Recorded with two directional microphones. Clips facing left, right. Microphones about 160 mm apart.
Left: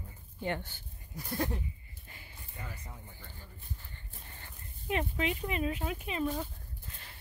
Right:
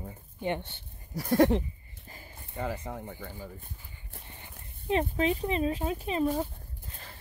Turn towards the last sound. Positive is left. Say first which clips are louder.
# right 6 dB
turn(degrees=-35)  # may be behind; listen again after turning